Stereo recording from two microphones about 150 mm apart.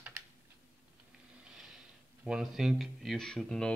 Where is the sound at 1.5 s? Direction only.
5° right (ahead or behind).